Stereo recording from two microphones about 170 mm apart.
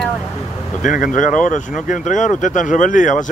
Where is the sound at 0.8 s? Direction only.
50° left (ahead or behind).